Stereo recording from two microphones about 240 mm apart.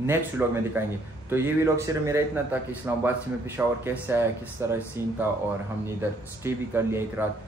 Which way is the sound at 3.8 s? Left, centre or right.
Centre.